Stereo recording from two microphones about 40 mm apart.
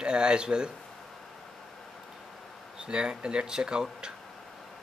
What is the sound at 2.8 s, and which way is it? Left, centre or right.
Speech, right.